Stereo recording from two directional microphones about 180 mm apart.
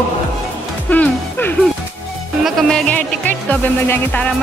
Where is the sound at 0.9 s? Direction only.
10° left (ahead or behind).